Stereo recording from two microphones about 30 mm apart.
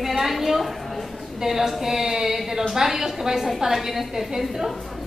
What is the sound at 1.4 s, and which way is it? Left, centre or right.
A woman's voice, centre.